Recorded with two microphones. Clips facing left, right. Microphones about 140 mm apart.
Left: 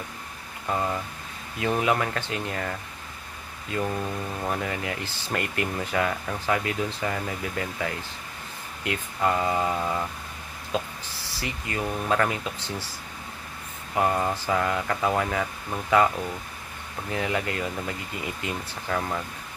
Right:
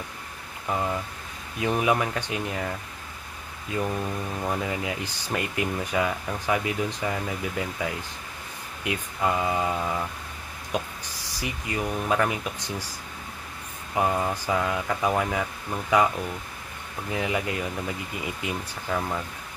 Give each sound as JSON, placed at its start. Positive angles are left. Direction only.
{"t": 0.7, "sound": "speech", "side_deg": -5}
{"t": 3.8, "sound": "speech", "side_deg": 0}
{"t": 4.5, "sound": "speech", "side_deg": -15}
{"t": 10.7, "sound": "speech", "side_deg": -15}
{"t": 14.3, "sound": "speech", "side_deg": -10}
{"t": 17.1, "sound": "speech", "side_deg": -15}